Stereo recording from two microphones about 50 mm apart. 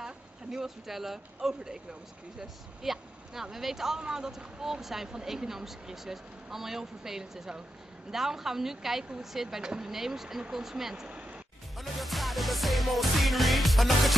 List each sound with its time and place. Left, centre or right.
0.0 s speech: centre
11.1 s music: right
11.7 s music: centre